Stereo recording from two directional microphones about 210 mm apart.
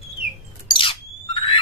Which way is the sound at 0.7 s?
25° left (ahead or behind).